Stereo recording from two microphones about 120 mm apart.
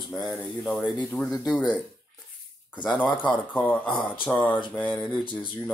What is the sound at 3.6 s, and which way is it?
Speech, 10° left (ahead or behind).